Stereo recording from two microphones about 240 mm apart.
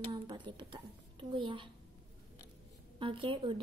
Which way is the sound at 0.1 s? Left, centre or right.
Centre.